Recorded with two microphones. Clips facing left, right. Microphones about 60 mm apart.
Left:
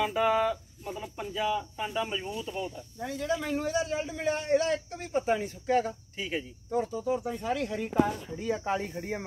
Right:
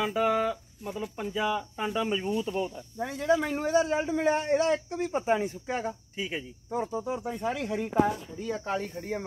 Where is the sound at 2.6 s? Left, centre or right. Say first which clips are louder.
Right 4 dB; right.